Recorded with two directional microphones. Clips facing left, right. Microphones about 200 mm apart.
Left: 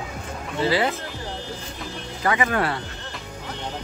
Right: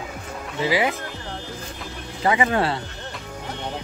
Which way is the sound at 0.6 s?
15° right (ahead or behind).